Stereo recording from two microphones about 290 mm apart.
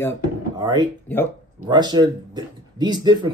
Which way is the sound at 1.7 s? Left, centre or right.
Centre.